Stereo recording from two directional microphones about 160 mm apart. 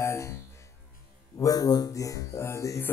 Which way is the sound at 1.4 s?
20° left (ahead or behind).